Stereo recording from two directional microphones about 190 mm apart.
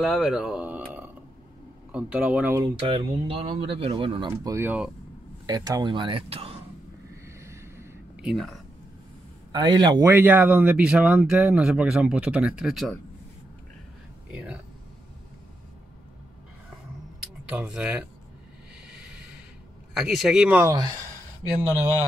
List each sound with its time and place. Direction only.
0.0 s speech: centre (ahead or behind)
2.9 s speech: 30° right (ahead or behind)
4.3 s speech: 15° right (ahead or behind)
5.5 s speech: 20° right (ahead or behind)
7.3 s a sound: 15° right (ahead or behind)
9.5 s speech: 25° right (ahead or behind); by 12.9 s centre (ahead or behind)
14.3 s speech: 5° right (ahead or behind)
17.2 s speech: 5° right (ahead or behind)
18.9 s a sound: 5° right (ahead or behind)
19.9 s speech: 5° right (ahead or behind)
20.6 s speech: 20° right (ahead or behind)